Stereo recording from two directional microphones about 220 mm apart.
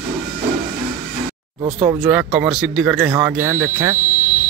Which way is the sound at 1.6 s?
25° right (ahead or behind).